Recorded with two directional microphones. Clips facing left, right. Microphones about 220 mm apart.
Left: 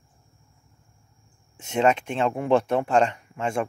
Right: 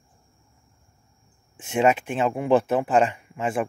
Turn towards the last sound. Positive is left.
turn(degrees=-5)  # may be behind; listen again after turning